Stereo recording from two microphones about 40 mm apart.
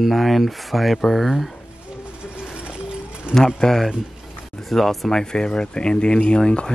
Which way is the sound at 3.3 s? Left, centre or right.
Right.